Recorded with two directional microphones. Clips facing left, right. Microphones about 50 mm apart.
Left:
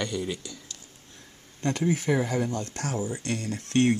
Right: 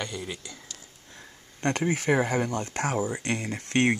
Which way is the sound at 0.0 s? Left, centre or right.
Centre.